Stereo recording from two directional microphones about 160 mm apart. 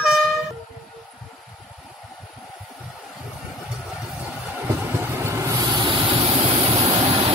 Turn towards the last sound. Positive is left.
turn(degrees=-35)  # may be behind; listen again after turning